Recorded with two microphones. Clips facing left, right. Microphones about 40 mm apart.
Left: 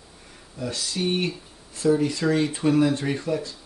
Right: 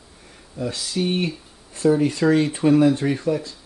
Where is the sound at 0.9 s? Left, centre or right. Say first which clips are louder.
Right 2 dB; centre.